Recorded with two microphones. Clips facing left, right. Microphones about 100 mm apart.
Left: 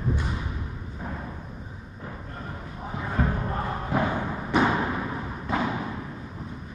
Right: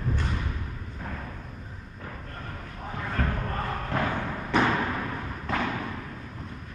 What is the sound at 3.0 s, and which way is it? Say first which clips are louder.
Thump: left 3 dB; 15° left (ahead or behind).